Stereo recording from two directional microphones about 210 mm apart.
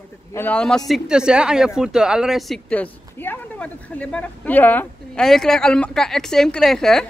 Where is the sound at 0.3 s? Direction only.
10° left (ahead or behind).